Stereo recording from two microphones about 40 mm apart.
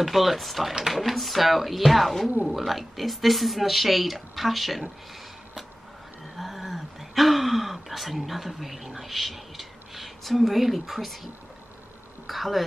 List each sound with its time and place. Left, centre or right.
0.0 s speech: centre
6.3 s gasp: centre
12.3 s speech: centre